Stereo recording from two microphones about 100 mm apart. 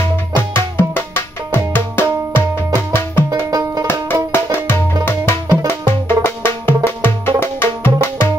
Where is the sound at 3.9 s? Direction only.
25° left (ahead or behind).